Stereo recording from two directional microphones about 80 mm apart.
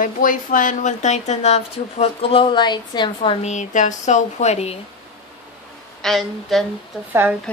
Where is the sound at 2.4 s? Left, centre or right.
Left.